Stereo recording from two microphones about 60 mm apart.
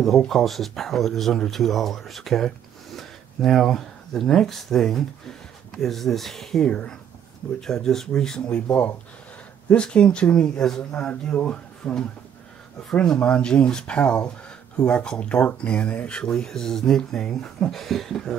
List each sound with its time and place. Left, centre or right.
0.3 s speech: centre
8.5 s speech: left
13.0 s speech: centre